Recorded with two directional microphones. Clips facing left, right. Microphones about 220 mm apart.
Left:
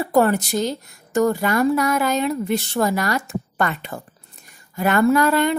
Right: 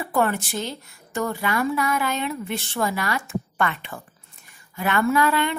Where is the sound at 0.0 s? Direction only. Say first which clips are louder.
Left 6 dB; 40° left (ahead or behind).